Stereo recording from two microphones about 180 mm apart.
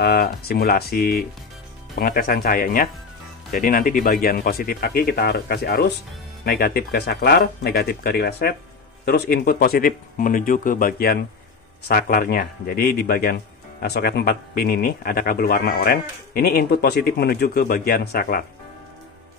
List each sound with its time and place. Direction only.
0.0 s speech: 60° left (ahead or behind)